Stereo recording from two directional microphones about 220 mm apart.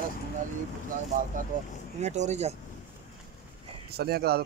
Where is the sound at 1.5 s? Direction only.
35° right (ahead or behind).